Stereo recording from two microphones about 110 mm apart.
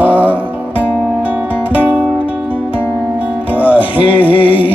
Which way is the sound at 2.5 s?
15° right (ahead or behind).